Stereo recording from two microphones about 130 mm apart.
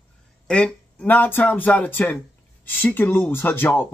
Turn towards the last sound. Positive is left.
turn(degrees=15)  # may be behind; listen again after turning